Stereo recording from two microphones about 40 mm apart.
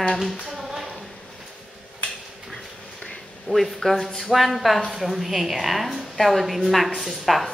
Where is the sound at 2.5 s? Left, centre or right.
Centre.